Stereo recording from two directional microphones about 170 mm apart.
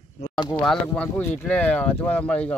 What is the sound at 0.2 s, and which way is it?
Speech, 20° left (ahead or behind).